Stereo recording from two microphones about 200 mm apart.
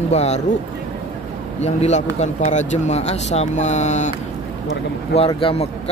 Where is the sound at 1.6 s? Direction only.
35° left (ahead or behind).